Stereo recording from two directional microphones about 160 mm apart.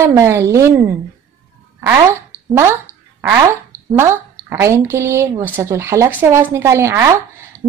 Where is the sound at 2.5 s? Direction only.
15° right (ahead or behind).